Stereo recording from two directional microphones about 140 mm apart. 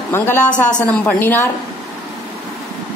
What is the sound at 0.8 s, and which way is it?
Speech, 10° left (ahead or behind).